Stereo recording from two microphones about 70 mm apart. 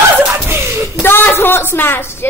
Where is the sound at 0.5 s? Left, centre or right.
Right.